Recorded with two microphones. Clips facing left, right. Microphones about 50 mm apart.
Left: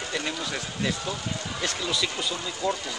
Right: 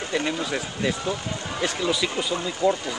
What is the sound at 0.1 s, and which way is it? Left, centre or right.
Speech, centre.